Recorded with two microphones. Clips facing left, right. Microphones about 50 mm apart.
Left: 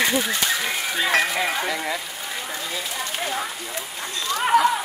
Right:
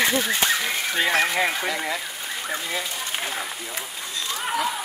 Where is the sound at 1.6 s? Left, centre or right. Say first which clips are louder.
Left 1 dB; centre.